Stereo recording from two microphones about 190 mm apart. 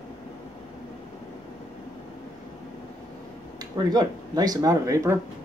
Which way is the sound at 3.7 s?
20° right (ahead or behind).